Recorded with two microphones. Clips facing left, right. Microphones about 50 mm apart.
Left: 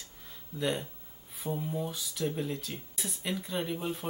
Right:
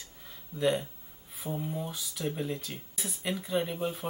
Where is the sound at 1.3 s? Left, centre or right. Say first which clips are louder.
Left 1 dB; centre.